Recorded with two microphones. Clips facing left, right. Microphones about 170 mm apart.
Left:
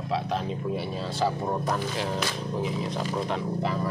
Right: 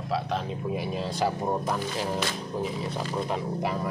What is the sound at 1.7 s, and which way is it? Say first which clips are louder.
Speech: even; 5° right (ahead or behind).